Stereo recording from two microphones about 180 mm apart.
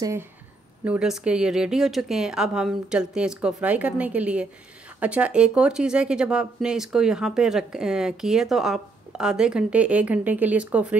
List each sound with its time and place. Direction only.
0.0 s a woman's voice: 15° right (ahead or behind)
0.8 s a woman's voice: 5° right (ahead or behind)